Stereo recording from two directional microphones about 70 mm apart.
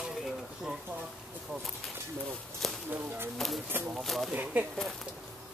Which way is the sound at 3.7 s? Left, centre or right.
Right.